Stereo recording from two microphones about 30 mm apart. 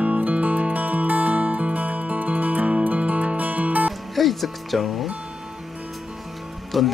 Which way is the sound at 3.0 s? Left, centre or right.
Right.